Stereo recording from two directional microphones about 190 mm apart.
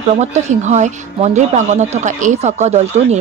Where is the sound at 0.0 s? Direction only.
35° right (ahead or behind).